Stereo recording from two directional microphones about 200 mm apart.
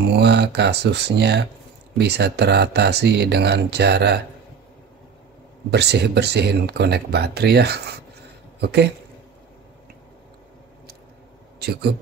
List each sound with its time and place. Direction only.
0.0 s speech: 60° right (ahead or behind)
5.7 s speech: 55° right (ahead or behind)
11.6 s speech: 50° right (ahead or behind)